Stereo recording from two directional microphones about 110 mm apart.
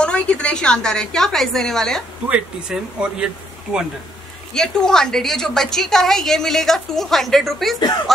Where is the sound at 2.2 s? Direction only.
10° right (ahead or behind).